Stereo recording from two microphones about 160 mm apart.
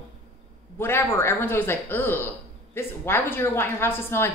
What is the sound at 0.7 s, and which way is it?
A woman's voice, 15° left (ahead or behind).